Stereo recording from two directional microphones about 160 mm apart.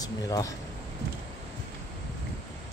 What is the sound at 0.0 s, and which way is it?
Speech, 20° left (ahead or behind).